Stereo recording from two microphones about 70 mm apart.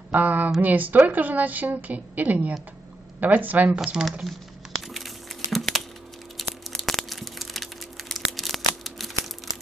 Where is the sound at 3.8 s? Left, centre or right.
Centre.